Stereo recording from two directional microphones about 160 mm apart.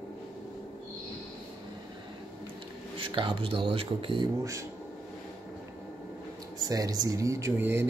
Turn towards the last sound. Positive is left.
turn(degrees=-15)  # may be behind; listen again after turning